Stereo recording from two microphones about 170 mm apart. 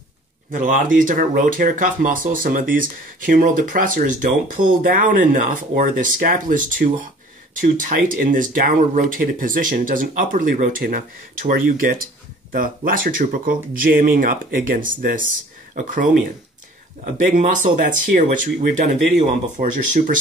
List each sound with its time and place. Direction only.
0.5 s speech: 50° right (ahead or behind)